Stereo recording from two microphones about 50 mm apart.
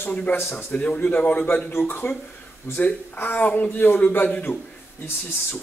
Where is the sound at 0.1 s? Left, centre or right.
Left.